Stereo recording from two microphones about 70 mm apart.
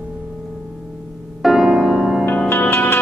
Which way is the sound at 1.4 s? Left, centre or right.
Centre.